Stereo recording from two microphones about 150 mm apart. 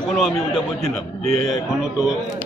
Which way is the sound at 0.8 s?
50° right (ahead or behind).